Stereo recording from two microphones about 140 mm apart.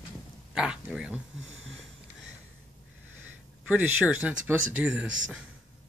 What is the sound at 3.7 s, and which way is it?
Speech, 10° right (ahead or behind).